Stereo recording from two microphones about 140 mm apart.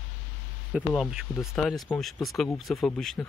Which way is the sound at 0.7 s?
5° right (ahead or behind).